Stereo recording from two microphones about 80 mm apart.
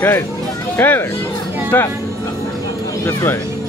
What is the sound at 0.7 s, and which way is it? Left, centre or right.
Speech, left.